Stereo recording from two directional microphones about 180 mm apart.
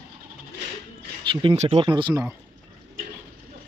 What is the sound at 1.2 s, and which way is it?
Speech, 30° right (ahead or behind).